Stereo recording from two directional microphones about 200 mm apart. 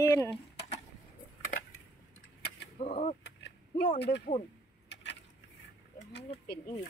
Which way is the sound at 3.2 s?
55° left (ahead or behind).